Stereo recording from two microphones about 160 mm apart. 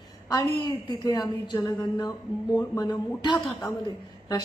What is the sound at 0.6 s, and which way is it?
Music, 25° left (ahead or behind).